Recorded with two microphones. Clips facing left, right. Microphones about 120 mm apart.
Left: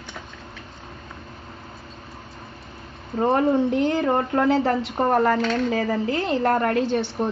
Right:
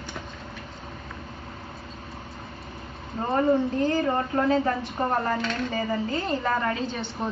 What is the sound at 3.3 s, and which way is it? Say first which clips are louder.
A woman's voice: left 1 dB; 75° left (ahead or behind).